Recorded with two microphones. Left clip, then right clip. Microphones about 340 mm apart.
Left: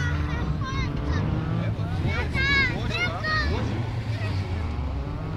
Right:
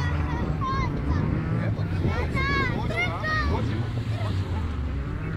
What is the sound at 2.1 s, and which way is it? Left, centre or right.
Vehicle, centre.